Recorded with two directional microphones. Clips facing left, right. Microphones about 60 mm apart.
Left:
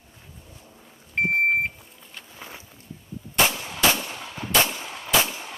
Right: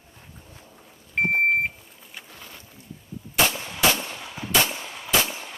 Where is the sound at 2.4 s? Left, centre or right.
Left.